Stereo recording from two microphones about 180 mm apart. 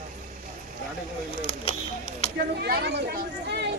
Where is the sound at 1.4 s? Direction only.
35° left (ahead or behind).